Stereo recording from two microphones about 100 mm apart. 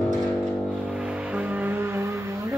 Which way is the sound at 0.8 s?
10° right (ahead or behind).